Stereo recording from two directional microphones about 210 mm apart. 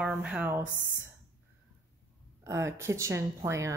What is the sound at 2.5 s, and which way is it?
Speech, 15° right (ahead or behind).